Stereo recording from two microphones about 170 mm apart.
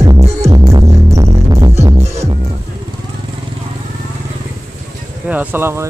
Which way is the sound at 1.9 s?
40° right (ahead or behind).